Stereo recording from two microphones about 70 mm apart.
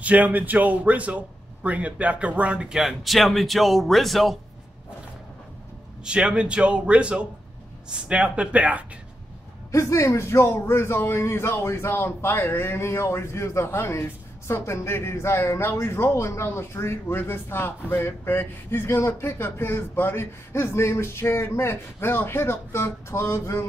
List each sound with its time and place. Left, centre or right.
0.0 s a man's voice: right; by 4.4 s centre
6.0 s a man's voice: centre
9.7 s speech: left